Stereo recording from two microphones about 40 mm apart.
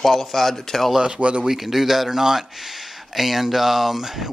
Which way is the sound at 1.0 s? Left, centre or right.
Right.